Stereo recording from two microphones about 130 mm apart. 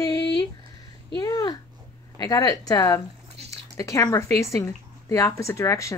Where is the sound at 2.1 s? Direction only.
30° left (ahead or behind).